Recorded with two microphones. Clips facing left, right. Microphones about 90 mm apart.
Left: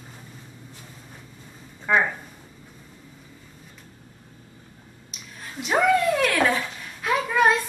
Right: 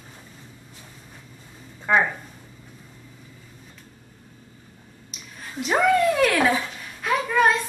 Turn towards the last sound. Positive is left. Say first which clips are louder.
# even
turn(degrees=0)  # may be behind; listen again after turning